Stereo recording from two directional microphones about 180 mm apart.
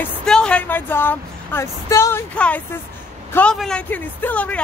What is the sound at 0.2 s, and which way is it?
Speech, 5° left (ahead or behind).